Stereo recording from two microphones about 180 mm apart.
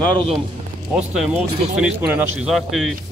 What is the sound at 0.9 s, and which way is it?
Speech, 5° right (ahead or behind).